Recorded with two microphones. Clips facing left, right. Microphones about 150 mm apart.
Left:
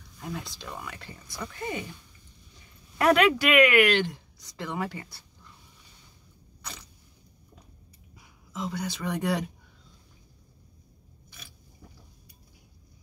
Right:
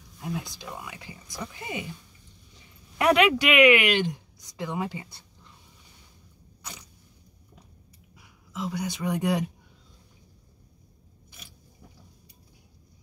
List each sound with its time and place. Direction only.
0.2 s speech: 10° right (ahead or behind)
3.0 s speech: 15° right (ahead or behind)
6.6 s a sound: 15° right (ahead or behind)
8.5 s speech: 5° right (ahead or behind)
8.8 s speech: 15° right (ahead or behind)